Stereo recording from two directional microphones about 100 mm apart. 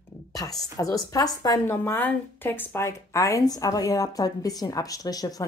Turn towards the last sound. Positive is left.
turn(degrees=40)  # may be behind; listen again after turning